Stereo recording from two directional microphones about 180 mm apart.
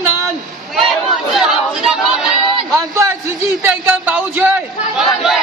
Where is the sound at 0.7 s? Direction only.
Centre (ahead or behind).